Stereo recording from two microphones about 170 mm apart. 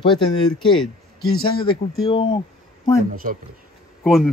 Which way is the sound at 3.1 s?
55° right (ahead or behind).